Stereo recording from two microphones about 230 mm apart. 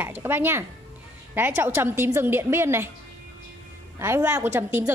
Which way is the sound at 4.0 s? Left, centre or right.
Centre.